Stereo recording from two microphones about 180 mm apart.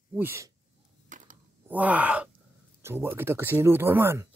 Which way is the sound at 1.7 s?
10° right (ahead or behind).